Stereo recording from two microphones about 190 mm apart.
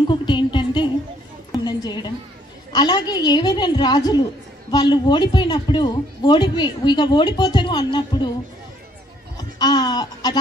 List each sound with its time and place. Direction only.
0.0 s speech: 25° left (ahead or behind)
1.5 s a sound: 20° left (ahead or behind)
2.7 s a woman's voice: 20° left (ahead or behind)
9.4 s music: 20° left (ahead or behind)